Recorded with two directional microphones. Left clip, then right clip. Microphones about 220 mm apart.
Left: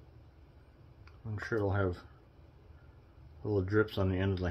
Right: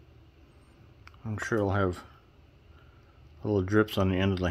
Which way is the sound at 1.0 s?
50° right (ahead or behind).